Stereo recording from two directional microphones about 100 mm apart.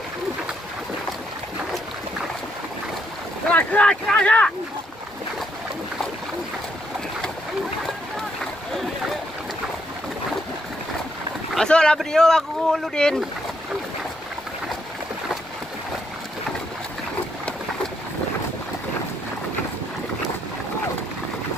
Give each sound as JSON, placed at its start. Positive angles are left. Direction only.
{"t": 3.4, "sound": "speech", "side_deg": 10}
{"t": 11.5, "sound": "speech", "side_deg": 10}